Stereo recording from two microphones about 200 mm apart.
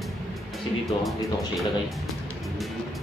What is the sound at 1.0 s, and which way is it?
Speech, centre (ahead or behind).